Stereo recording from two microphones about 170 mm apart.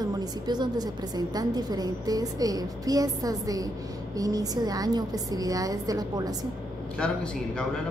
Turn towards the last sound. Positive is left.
turn(degrees=5)  # may be behind; listen again after turning